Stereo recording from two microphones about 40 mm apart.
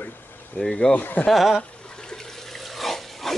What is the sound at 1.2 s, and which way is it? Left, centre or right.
Speech, left.